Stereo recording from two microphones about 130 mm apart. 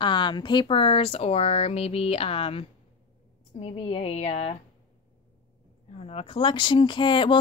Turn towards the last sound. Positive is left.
turn(degrees=40)  # may be behind; listen again after turning